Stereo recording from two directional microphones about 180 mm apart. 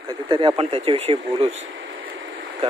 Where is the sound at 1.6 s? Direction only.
90° right.